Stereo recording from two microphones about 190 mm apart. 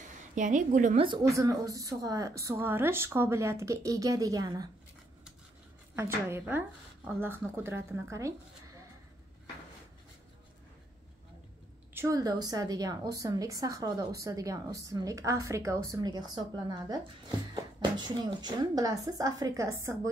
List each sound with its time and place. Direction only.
0.4 s a woman's voice: 40° right (ahead or behind)
1.0 s speech: 20° right (ahead or behind)
5.9 s speech: 15° right (ahead or behind)
11.9 s a woman's voice: 15° right (ahead or behind)